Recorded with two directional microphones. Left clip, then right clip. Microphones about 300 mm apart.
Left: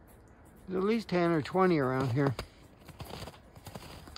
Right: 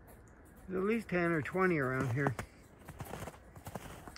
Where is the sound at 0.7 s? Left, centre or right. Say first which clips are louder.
Left 4 dB; centre.